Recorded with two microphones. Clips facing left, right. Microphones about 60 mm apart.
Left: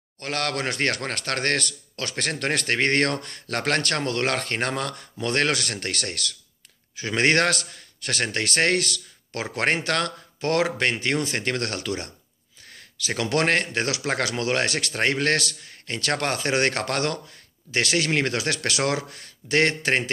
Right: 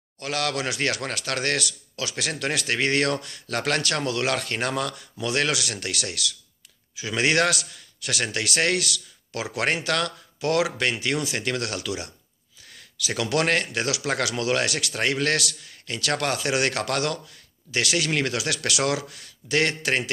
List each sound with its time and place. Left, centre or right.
0.2 s a man's voice: left